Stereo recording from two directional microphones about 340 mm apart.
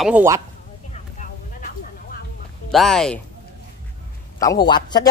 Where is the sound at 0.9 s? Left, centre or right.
Left.